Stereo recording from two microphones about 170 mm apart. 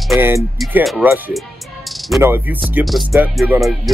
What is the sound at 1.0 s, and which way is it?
Speech, 10° right (ahead or behind).